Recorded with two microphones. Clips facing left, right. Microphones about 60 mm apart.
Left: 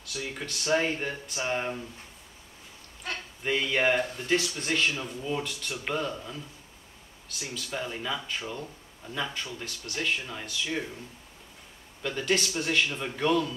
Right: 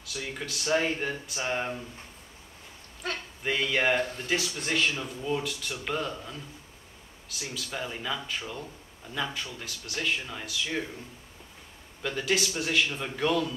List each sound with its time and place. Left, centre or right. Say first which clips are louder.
0.5 s speech: even; centre
3.4 s speech: left 1 dB; centre
12.0 s speech: even; centre